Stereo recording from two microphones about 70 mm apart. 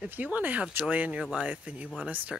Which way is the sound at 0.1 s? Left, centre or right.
Right.